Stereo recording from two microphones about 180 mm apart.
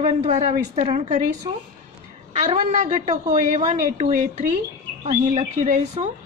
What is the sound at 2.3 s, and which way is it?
A woman's voice, 35° right (ahead or behind).